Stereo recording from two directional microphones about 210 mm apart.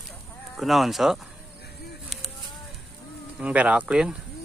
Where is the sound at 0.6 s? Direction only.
Centre (ahead or behind).